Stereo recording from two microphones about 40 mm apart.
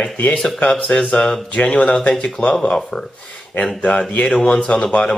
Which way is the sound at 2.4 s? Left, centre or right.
Left.